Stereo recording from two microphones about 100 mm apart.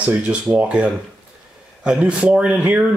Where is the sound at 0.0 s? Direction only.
15° right (ahead or behind).